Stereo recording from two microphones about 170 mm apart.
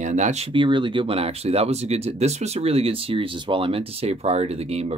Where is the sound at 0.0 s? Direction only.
45° right (ahead or behind).